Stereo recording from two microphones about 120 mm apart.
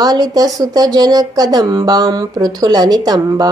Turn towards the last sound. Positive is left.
turn(degrees=-30)  # may be behind; listen again after turning